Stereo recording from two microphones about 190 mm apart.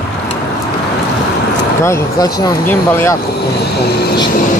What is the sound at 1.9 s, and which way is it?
Speech, 20° left (ahead or behind).